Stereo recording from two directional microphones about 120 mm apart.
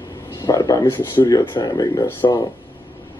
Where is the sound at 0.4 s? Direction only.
30° left (ahead or behind).